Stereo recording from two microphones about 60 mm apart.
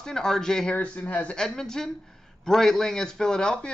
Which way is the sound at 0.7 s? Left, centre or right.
Left.